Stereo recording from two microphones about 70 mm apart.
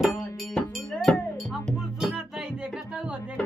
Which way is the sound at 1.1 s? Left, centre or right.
Centre.